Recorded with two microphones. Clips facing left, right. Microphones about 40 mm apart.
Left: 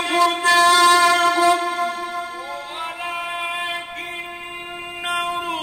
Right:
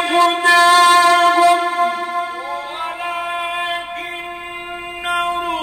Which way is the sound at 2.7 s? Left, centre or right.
Centre.